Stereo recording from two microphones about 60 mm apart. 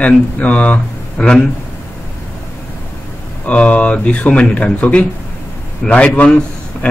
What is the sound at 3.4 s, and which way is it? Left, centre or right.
A man's voice, left.